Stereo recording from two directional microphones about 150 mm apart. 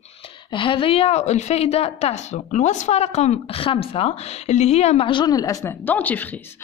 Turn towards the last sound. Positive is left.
turn(degrees=10)  # may be behind; listen again after turning